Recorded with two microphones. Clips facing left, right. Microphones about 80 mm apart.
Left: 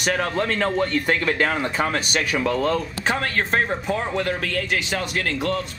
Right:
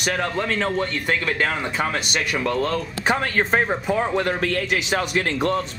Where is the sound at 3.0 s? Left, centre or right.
Right.